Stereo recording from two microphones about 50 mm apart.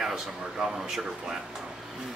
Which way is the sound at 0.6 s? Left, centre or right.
Centre.